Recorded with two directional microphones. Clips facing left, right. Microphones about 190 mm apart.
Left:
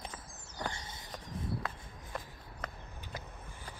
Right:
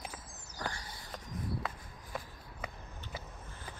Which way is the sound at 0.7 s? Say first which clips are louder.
Even; 25° left (ahead or behind).